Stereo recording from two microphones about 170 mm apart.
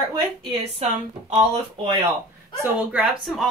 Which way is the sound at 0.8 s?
35° right (ahead or behind).